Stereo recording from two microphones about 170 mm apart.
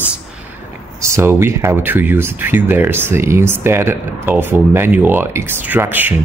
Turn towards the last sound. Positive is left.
turn(degrees=-10)  # may be behind; listen again after turning